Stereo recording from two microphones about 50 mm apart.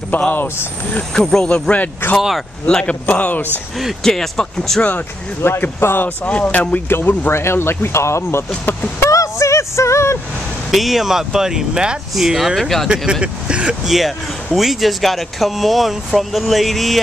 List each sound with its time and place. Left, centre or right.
0.3 s speech: left
1.1 s speech: centre
1.5 s speech: left
2.1 s speech: centre
2.6 s speech: left
4.0 s speech: centre
5.4 s speech: left
6.0 s speech: left
6.9 s speech: left
9.1 s a sound: left
10.7 s speech: centre
12.1 s speech: centre
12.8 s speech: centre
13.8 s speech: centre